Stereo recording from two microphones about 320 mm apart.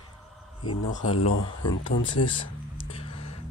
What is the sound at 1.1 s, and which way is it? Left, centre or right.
Speech, left.